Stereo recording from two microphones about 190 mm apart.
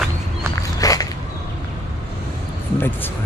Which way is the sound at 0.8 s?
20° left (ahead or behind).